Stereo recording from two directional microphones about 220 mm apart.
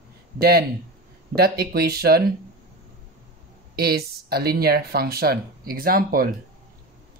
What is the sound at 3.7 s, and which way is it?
Speech, 45° right (ahead or behind).